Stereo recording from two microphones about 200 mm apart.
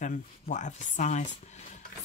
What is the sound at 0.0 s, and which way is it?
Speech, 40° left (ahead or behind).